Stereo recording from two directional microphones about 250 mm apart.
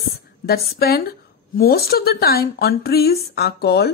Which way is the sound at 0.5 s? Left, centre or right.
Left.